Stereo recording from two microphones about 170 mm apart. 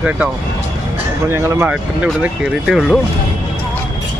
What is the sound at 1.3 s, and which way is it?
Speech, 15° right (ahead or behind).